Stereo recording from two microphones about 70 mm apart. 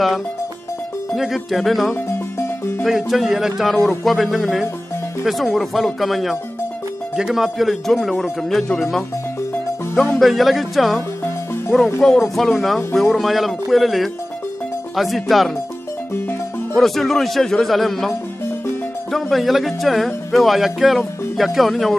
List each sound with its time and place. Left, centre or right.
1.1 s speech: centre
2.0 s music: left
2.8 s speech: centre
16.7 s speech: centre
19.1 s speech: centre